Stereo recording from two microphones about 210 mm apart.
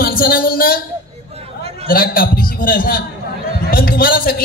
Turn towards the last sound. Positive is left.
turn(degrees=45)  # may be behind; listen again after turning